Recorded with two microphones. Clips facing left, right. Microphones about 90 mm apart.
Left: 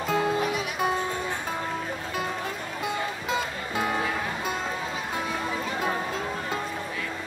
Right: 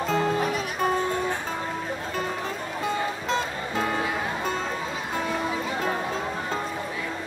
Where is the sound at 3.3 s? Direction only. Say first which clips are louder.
Right 2 dB; 5° left (ahead or behind).